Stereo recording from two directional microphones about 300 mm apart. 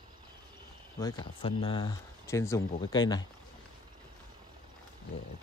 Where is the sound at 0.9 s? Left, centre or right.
Centre.